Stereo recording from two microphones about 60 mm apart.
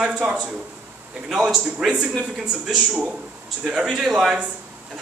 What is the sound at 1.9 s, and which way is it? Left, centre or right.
Speech, centre.